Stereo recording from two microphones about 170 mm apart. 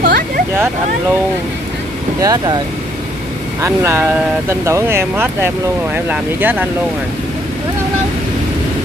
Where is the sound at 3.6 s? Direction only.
15° right (ahead or behind).